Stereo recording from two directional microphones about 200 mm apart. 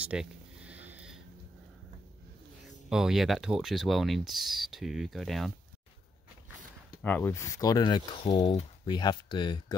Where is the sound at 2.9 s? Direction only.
Centre (ahead or behind).